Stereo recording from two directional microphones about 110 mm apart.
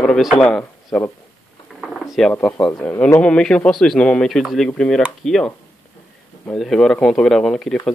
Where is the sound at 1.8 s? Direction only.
Centre (ahead or behind).